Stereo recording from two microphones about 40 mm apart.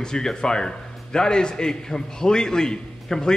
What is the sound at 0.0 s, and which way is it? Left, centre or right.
A man's voice, centre.